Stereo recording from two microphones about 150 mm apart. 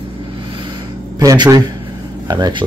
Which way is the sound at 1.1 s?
25° right (ahead or behind).